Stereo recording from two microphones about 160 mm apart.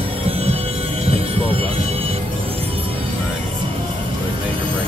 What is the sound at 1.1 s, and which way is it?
Music, 40° right (ahead or behind).